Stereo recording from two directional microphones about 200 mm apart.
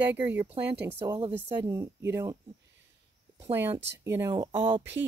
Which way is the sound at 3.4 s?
10° right (ahead or behind).